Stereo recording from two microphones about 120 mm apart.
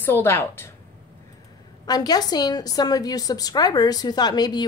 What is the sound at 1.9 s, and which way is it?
A woman's voice, 35° left (ahead or behind).